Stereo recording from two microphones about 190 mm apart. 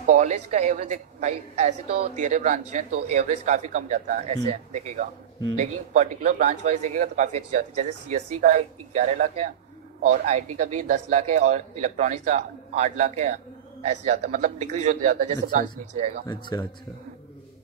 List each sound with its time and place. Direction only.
0.1 s speech: 40° right (ahead or behind)
16.3 s speech: 25° left (ahead or behind)